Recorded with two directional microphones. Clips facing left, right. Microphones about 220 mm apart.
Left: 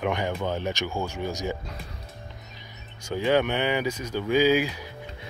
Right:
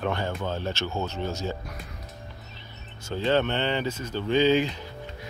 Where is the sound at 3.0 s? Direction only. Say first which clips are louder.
Left 1 dB; 15° left (ahead or behind).